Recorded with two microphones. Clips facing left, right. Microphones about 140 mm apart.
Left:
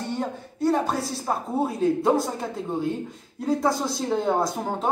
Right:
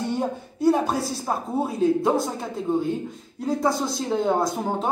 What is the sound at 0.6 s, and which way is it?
Speech, 5° right (ahead or behind).